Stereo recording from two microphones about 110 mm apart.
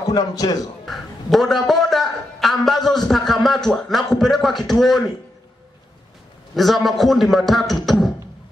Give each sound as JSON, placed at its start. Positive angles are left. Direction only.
{"t": 0.1, "sound": "a man's voice", "side_deg": 35}
{"t": 0.8, "sound": "a man's voice", "side_deg": 0}
{"t": 6.5, "sound": "a man's voice", "side_deg": 0}